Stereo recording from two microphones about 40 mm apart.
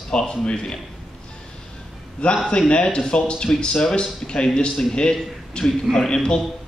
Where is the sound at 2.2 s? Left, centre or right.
Left.